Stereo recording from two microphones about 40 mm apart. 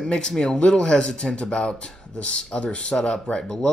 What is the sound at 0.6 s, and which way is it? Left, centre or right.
Speech, left.